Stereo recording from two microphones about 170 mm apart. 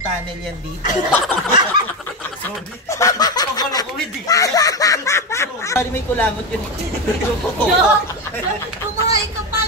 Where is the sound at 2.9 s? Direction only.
20° left (ahead or behind).